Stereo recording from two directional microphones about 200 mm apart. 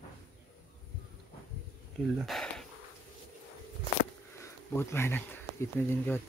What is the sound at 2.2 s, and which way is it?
Speech, centre (ahead or behind).